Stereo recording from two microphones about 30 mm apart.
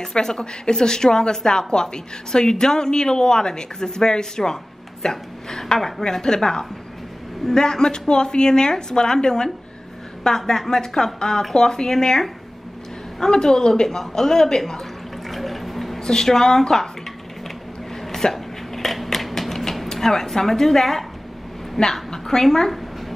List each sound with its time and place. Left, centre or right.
0.1 s a woman's voice: left
6.2 s a woman's voice: left
13.2 s a woman's voice: centre
15.2 s water: centre
16.0 s speech: centre
18.3 s hiccup: centre
19.0 s a sound: centre
20.0 s a woman's voice: centre
22.1 s a sound: centre